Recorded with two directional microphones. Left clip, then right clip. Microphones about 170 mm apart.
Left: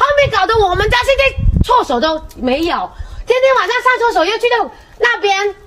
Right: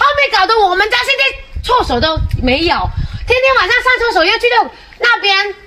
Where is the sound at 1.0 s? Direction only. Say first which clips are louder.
Left 1 dB; 45° left (ahead or behind).